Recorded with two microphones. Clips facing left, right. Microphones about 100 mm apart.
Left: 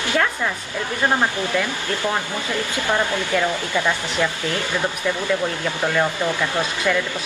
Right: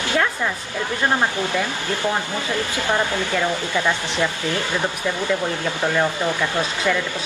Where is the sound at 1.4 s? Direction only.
20° right (ahead or behind).